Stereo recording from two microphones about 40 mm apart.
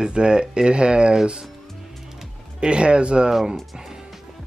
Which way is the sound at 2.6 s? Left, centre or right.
Right.